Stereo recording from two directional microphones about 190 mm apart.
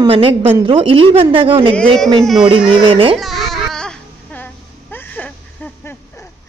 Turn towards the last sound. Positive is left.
turn(degrees=10)  # may be behind; listen again after turning